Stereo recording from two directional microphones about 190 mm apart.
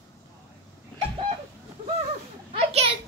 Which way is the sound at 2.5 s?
30° right (ahead or behind).